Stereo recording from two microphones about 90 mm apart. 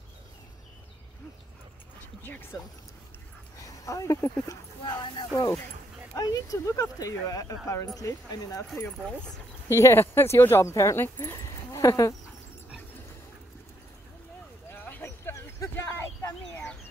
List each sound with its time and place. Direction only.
2.2 s speech: 20° left (ahead or behind)
3.6 s speech: 40° left (ahead or behind)
4.8 s speech: 60° left (ahead or behind)
5.3 s speech: 35° left (ahead or behind)
9.7 s speech: 30° left (ahead or behind)
11.3 s a sound: 40° left (ahead or behind)
12.3 s dog: 15° right (ahead or behind)
14.7 s a sound: 20° left (ahead or behind)